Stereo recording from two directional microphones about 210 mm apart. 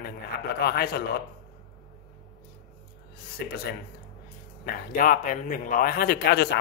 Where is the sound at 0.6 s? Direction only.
50° left (ahead or behind).